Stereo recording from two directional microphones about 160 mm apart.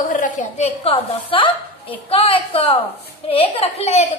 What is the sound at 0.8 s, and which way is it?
A woman's voice, 35° left (ahead or behind).